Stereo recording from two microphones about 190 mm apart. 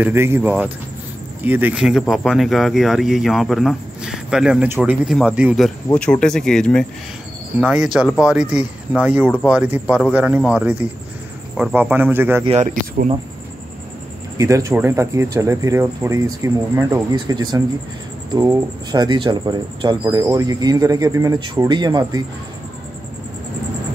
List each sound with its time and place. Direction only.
0.0 s speech: 10° right (ahead or behind)
5.9 s speech: 5° left (ahead or behind); by 12.4 s 10° right (ahead or behind)
12.4 s speech: 35° right (ahead or behind)
14.3 s speech: 15° right (ahead or behind)